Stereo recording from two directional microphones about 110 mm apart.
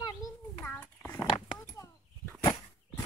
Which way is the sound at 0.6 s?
15° left (ahead or behind).